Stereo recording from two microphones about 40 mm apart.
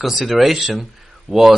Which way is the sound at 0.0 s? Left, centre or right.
Centre.